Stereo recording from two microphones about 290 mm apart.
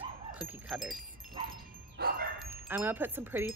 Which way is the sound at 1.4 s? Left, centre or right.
Centre.